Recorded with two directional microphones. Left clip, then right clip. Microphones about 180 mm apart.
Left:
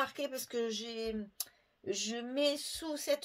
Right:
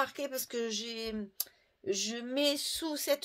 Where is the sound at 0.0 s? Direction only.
45° right (ahead or behind).